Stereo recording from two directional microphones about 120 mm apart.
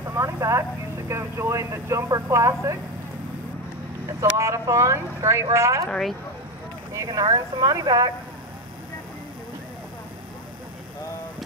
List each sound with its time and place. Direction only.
0.0 s speech: 25° right (ahead or behind)
4.2 s speech: 25° right (ahead or behind)
5.9 s speech: 5° left (ahead or behind)
6.9 s speech: 30° right (ahead or behind)